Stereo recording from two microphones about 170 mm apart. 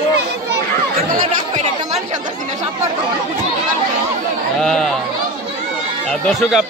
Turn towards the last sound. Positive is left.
turn(degrees=0)  # may be behind; listen again after turning